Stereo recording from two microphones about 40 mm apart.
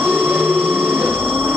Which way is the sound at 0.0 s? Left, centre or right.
Right.